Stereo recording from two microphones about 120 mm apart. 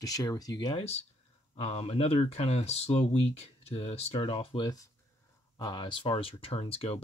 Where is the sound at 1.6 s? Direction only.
60° left (ahead or behind).